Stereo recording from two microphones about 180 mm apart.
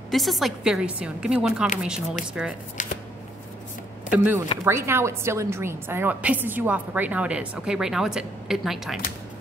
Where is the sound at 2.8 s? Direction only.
45° left (ahead or behind).